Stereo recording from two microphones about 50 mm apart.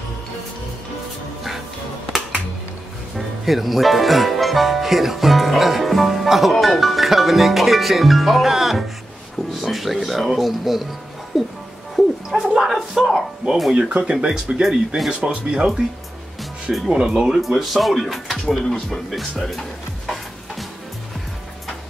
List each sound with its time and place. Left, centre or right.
3.2 s music: centre
6.5 s speech: centre
11.9 s a sound: centre
13.7 s speech: right
16.9 s speech: centre
17.4 s speech: centre
18.4 s speech: centre